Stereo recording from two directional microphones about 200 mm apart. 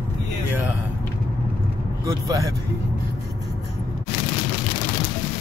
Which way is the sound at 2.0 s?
15° right (ahead or behind).